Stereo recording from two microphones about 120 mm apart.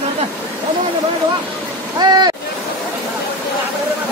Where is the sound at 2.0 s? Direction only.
35° right (ahead or behind).